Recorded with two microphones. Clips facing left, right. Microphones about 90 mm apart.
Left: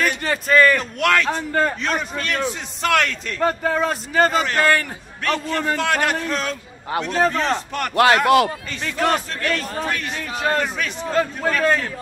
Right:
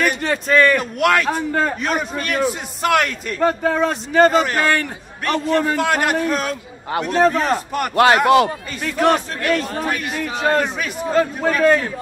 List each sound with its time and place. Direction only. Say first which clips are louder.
0.0 s a man's voice: right 2 dB; centre (ahead or behind)
7.9 s speech: right 2 dB; 25° right (ahead or behind)
8.5 s a man's voice: right 2 dB; 5° right (ahead or behind)